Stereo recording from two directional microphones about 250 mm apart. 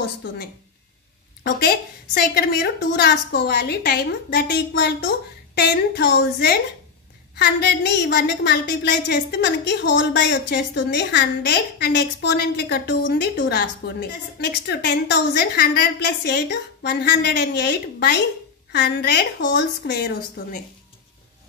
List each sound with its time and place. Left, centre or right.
0.0 s a woman's voice: left